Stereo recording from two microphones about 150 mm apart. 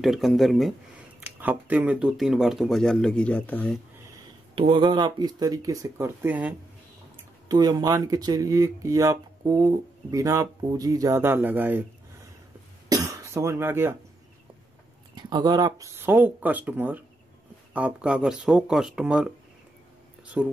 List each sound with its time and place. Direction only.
0.0 s speech: centre (ahead or behind)
1.2 s speech: 10° right (ahead or behind); by 3.8 s 10° left (ahead or behind)
4.6 s speech: 35° right (ahead or behind); by 6.5 s 10° right (ahead or behind)
7.4 s speech: 25° right (ahead or behind)
12.9 s cough: 25° right (ahead or behind)
15.1 s speech: 25° right (ahead or behind); by 19.2 s 5° right (ahead or behind)
20.4 s speech: 5° right (ahead or behind)